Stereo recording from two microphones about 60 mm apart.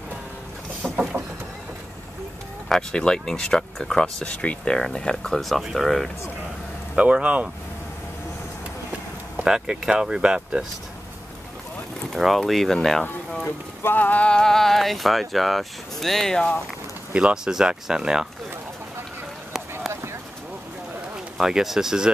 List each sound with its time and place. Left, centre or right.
0.8 s a sound: centre
2.7 s speech: centre
7.0 s speech: right
9.4 s speech: centre
12.1 s speech: centre
13.8 s clip-clop: left
14.3 s speech: centre
17.1 s speech: centre
19.9 s a sound: right
21.4 s speech: centre